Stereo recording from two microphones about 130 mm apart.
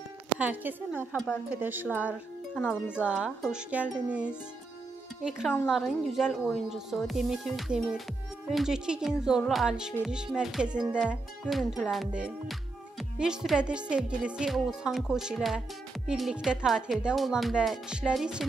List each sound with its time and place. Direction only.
0.4 s speech: 15° right (ahead or behind)
2.5 s wind chime: 15° left (ahead or behind)
2.9 s a woman's voice: 10° right (ahead or behind)